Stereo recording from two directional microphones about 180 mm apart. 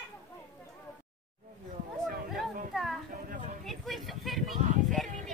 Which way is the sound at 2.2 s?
Centre (ahead or behind).